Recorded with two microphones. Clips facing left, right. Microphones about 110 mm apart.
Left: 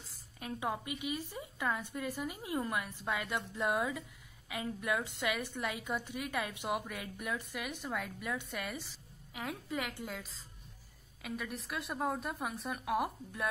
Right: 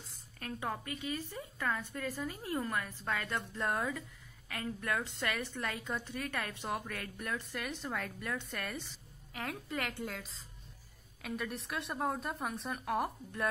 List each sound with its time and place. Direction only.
0.4 s a woman's voice: 15° left (ahead or behind)